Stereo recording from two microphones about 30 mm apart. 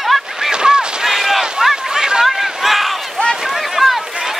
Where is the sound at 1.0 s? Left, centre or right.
Centre.